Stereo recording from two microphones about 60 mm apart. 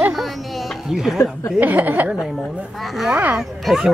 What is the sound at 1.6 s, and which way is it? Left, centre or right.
Speech, right.